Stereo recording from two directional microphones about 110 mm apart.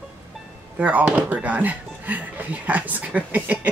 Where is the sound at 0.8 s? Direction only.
15° right (ahead or behind).